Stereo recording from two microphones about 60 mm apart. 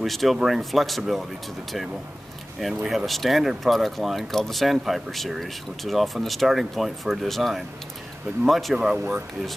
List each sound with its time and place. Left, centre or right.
0.0 s speech: centre
2.7 s speech: centre
8.7 s speech: centre